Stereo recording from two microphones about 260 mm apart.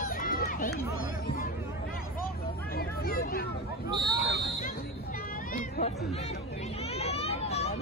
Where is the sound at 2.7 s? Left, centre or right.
Left.